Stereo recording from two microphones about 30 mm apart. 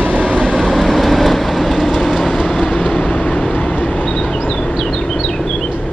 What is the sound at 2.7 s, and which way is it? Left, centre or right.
Vehicle, left.